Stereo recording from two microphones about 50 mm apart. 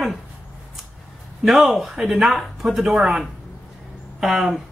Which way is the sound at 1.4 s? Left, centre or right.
Centre.